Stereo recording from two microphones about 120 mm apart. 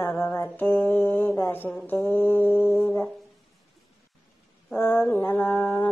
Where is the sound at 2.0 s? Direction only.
15° left (ahead or behind).